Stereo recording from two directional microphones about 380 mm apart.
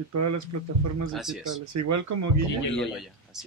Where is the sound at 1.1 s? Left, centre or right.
Centre.